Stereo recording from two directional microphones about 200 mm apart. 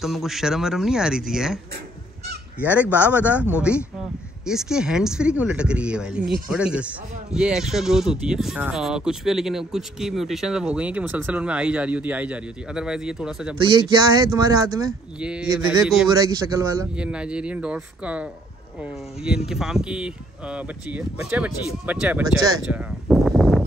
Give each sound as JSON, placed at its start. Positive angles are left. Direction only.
{"t": 0.0, "sound": "speech", "side_deg": 0}
{"t": 2.6, "sound": "speech", "side_deg": -10}
{"t": 13.6, "sound": "speech", "side_deg": -25}
{"t": 14.9, "sound": "speech", "side_deg": -5}
{"t": 16.2, "sound": "speech", "side_deg": -15}
{"t": 16.9, "sound": "speech", "side_deg": -5}
{"t": 22.7, "sound": "a sound", "side_deg": -5}